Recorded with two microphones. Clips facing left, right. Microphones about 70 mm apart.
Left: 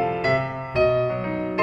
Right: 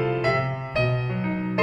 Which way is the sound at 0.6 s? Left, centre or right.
Left.